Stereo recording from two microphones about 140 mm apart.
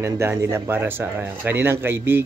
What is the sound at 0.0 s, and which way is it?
Speech, 20° right (ahead or behind).